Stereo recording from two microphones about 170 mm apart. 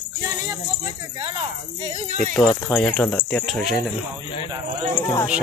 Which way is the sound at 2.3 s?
10° left (ahead or behind).